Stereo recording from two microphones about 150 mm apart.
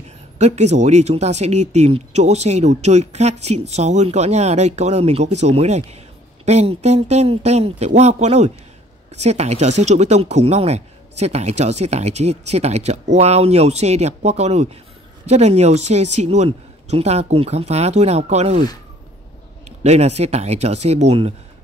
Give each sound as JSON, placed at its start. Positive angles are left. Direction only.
{"t": 0.4, "sound": "speech", "side_deg": -50}
{"t": 19.8, "sound": "speech", "side_deg": -45}